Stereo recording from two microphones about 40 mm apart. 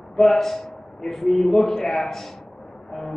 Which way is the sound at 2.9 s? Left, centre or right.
Centre.